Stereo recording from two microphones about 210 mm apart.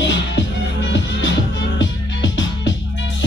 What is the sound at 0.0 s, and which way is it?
Music, 60° left (ahead or behind).